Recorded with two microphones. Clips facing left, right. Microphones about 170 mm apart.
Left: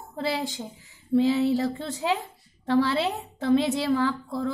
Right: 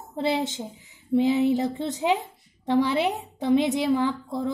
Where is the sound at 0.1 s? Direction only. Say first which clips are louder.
Right 3 dB; 20° right (ahead or behind).